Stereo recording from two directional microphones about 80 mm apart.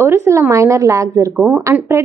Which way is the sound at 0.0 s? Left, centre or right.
Right.